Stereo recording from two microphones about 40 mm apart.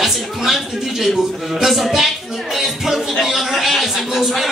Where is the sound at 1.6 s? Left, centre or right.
Centre.